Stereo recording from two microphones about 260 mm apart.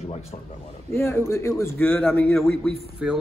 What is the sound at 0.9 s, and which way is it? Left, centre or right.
Speech, centre.